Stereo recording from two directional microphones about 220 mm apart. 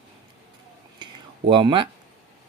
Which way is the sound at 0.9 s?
20° right (ahead or behind).